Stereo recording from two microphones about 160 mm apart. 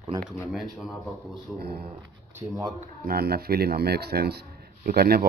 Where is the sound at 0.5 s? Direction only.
Centre (ahead or behind).